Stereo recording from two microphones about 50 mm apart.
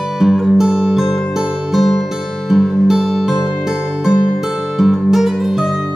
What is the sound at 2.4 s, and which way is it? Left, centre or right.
Music, centre.